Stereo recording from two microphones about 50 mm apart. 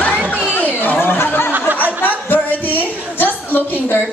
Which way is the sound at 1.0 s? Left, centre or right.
Left.